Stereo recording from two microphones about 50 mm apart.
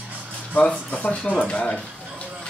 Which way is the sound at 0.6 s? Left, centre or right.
Left.